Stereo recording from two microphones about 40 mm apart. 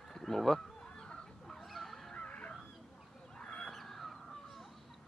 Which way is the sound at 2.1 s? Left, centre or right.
Left.